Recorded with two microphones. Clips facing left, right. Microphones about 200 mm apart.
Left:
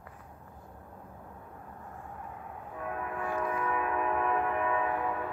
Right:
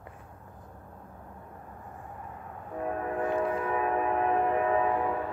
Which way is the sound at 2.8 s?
35° right (ahead or behind).